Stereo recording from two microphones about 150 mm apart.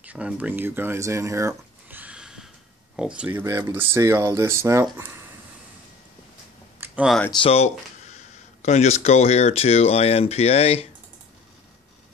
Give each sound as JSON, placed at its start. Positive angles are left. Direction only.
{"t": 0.0, "sound": "speech", "side_deg": -10}
{"t": 3.4, "sound": "speech", "side_deg": -20}
{"t": 6.8, "sound": "a sound", "side_deg": -5}
{"t": 7.2, "sound": "speech", "side_deg": 35}